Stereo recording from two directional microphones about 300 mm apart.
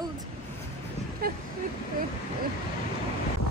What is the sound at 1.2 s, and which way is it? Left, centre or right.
Speech, right.